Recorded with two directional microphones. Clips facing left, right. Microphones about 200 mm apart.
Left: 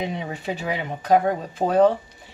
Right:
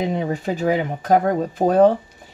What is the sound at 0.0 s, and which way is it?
Speech, 45° right (ahead or behind).